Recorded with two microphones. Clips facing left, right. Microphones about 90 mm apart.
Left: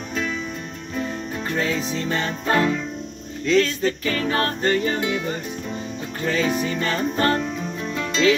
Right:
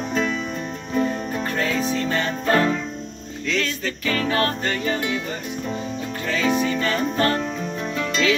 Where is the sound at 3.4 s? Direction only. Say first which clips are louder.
Left 6 dB; 35° left (ahead or behind).